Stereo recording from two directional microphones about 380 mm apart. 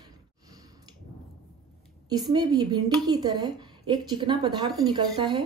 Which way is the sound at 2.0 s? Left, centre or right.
Centre.